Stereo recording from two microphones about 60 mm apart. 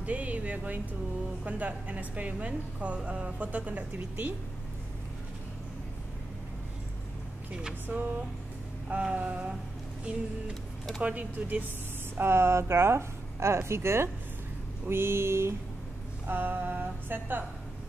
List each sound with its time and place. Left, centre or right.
0.0 s a woman's voice: right
7.9 s a sound: right
8.8 s a woman's voice: centre
11.0 s a woman's voice: right
12.2 s speech: right
16.3 s a sound: right